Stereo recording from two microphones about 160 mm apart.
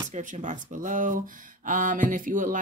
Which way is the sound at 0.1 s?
50° right (ahead or behind).